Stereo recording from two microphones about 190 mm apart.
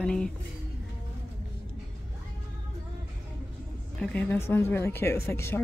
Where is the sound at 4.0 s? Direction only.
5° left (ahead or behind).